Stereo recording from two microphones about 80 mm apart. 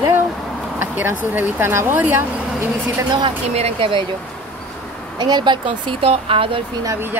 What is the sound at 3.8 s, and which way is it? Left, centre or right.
Speech, right.